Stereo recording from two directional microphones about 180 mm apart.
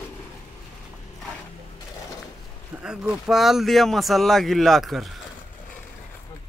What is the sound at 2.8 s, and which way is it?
Speech, 5° right (ahead or behind).